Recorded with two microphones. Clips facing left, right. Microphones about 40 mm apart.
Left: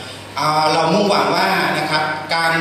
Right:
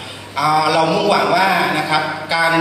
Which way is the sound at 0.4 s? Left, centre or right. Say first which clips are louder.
Right 1 dB; right.